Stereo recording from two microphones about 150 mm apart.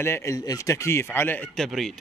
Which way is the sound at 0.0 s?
20° left (ahead or behind).